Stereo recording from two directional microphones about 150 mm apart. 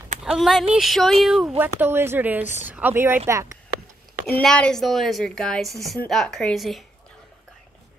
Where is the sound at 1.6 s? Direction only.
15° right (ahead or behind).